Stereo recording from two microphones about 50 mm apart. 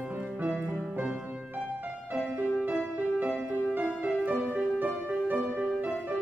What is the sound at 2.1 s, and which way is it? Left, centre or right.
Music, right.